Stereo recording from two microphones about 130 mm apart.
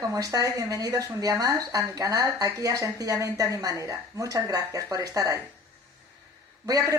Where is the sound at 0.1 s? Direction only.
30° right (ahead or behind).